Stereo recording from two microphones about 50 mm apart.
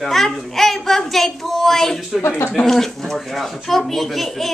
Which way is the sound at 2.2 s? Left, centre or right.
Left.